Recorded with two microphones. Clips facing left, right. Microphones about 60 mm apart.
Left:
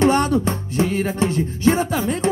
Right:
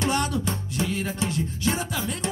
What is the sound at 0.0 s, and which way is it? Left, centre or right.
Music, left.